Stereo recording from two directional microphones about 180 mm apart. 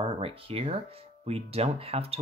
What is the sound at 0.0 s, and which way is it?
Speech, 30° right (ahead or behind).